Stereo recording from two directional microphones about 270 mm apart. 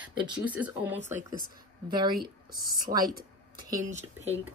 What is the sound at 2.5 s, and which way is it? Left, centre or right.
Speech, right.